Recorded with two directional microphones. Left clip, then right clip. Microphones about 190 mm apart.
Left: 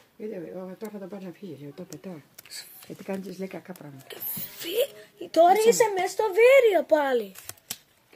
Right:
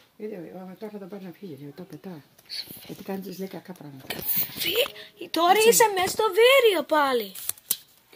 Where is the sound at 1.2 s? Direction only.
30° right (ahead or behind).